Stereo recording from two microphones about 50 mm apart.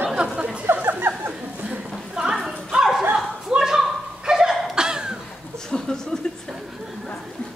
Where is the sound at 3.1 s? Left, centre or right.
Centre.